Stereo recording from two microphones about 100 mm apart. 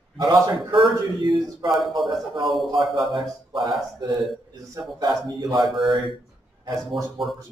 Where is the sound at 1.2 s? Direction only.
50° right (ahead or behind).